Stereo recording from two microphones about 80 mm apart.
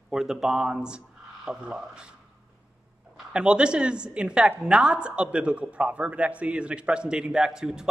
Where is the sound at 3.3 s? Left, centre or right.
Centre.